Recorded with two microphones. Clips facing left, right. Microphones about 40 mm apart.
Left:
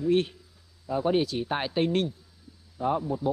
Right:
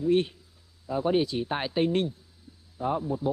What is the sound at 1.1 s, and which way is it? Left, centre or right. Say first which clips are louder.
Speech: right 1 dB; left.